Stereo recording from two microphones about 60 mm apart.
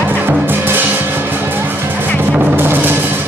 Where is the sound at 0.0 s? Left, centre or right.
Right.